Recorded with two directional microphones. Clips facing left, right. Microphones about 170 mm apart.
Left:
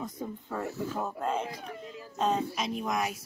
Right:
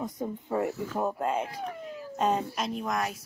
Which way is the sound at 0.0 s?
15° right (ahead or behind).